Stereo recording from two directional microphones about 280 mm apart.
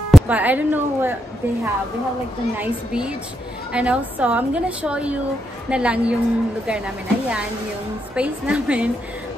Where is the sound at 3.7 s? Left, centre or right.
Centre.